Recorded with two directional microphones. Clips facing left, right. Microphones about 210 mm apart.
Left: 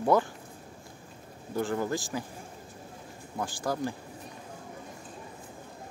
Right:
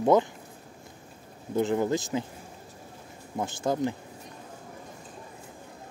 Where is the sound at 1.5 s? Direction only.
20° right (ahead or behind).